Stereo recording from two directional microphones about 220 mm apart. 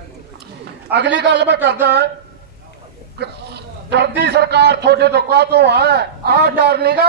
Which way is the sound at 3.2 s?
50° right (ahead or behind).